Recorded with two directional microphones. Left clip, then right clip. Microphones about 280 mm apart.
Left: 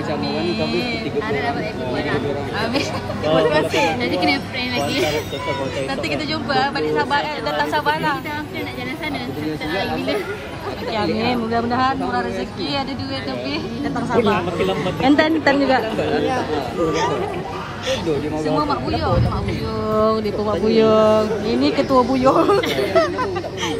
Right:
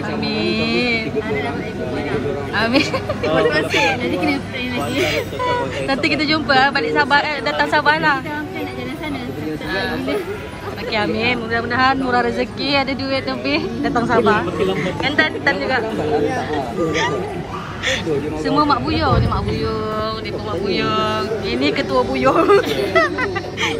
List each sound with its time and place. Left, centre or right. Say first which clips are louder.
0.2 s a sound: right 2 dB; centre
2.5 s a woman's voice: right 7 dB; centre
3.3 s speech: left 1 dB; left
5.9 s a woman's voice: right 5 dB; centre
10.9 s a woman's voice: right 2 dB; centre
14.7 s speech: left 2 dB; left
16.8 s speech: even; left
18.4 s a woman's voice: right 7 dB; centre
20.0 s speech: left 5 dB; left
22.6 s speech: right 1 dB; centre